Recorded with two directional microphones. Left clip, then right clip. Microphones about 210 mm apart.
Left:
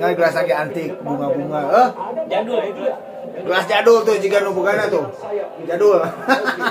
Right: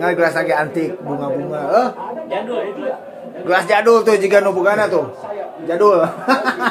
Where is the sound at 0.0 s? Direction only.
25° right (ahead or behind).